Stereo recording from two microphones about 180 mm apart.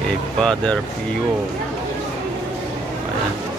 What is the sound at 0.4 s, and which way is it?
Speech, 5° left (ahead or behind).